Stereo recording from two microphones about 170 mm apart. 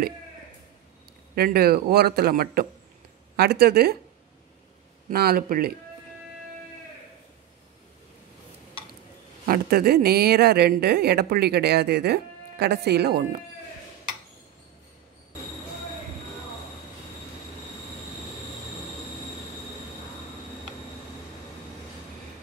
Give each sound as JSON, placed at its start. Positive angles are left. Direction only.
{"t": 1.3, "sound": "speech", "side_deg": -65}
{"t": 5.1, "sound": "speech", "side_deg": -65}
{"t": 9.5, "sound": "speech", "side_deg": -65}